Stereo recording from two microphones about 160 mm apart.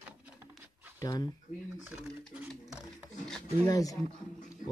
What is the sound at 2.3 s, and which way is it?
Speech, centre (ahead or behind).